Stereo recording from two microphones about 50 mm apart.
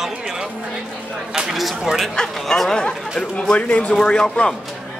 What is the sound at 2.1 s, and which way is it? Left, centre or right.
Speech, centre.